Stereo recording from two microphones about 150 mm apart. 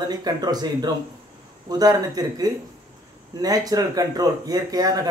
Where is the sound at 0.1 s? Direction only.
25° right (ahead or behind).